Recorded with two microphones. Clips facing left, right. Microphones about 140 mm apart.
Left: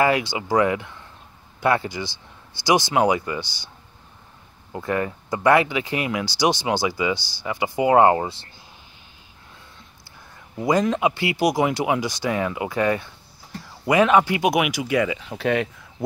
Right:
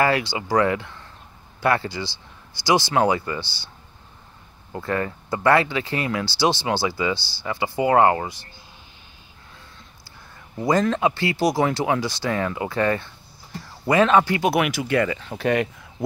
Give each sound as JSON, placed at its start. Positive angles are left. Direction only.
{"t": 0.0, "sound": "speech", "side_deg": 15}
{"t": 4.7, "sound": "speech", "side_deg": 15}
{"t": 10.6, "sound": "speech", "side_deg": 15}